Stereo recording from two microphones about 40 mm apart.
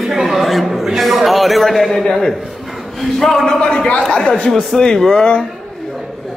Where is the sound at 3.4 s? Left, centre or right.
Left.